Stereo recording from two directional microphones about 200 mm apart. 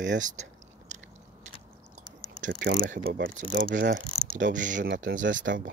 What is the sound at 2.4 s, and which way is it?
Speech, 50° right (ahead or behind).